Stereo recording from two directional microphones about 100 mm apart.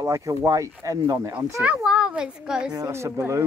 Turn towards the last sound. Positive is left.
turn(degrees=-30)  # may be behind; listen again after turning